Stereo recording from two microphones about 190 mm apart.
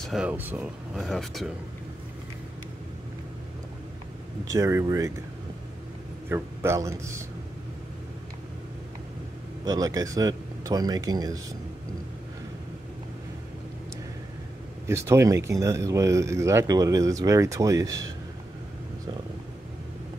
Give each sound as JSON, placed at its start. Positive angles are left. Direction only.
{"t": 0.0, "sound": "speech", "side_deg": -5}
{"t": 4.5, "sound": "speech", "side_deg": -15}
{"t": 6.2, "sound": "speech", "side_deg": -15}
{"t": 9.7, "sound": "speech", "side_deg": -20}
{"t": 14.9, "sound": "speech", "side_deg": -15}